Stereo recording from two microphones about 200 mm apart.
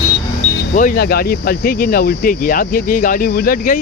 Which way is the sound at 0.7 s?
45° left (ahead or behind).